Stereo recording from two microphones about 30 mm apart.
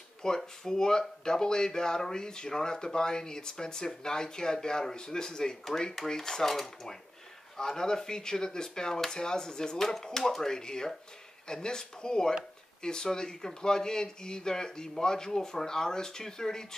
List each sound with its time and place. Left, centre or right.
0.2 s speech: left
5.7 s cutlery: centre
6.5 s speech: centre
7.5 s speech: left
9.8 s cutlery: centre
10.1 s speech: centre